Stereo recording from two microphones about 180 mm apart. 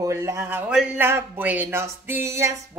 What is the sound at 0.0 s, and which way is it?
Speech, 15° right (ahead or behind).